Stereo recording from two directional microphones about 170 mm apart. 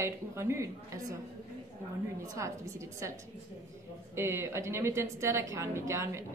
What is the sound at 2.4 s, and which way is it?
Speech, 15° right (ahead or behind).